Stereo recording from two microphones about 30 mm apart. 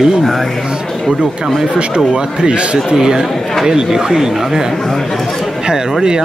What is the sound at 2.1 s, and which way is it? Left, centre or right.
Speech, right.